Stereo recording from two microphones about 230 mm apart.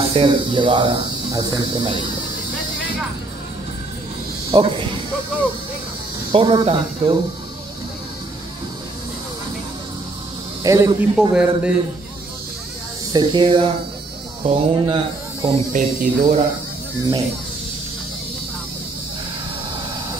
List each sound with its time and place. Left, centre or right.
0.1 s speech: right
4.5 s speech: right
6.3 s speech: right
10.6 s a man's voice: centre
13.1 s speech: centre